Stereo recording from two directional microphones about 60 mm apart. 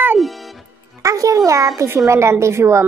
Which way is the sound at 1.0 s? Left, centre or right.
Right.